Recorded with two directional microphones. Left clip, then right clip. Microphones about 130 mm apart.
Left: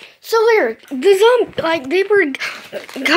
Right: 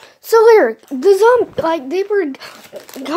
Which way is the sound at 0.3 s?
55° right (ahead or behind).